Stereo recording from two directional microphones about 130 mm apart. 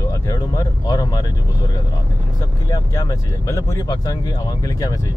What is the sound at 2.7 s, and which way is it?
Speech, 25° left (ahead or behind).